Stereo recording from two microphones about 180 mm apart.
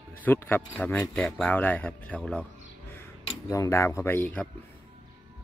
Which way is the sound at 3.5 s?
15° left (ahead or behind).